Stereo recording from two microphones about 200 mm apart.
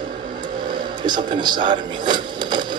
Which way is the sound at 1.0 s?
20° right (ahead or behind).